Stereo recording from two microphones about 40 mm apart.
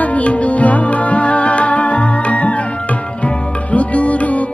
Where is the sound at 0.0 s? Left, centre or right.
Left.